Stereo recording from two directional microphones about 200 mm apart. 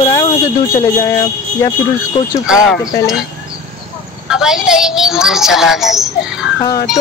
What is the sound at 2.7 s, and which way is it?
Speech, 15° left (ahead or behind).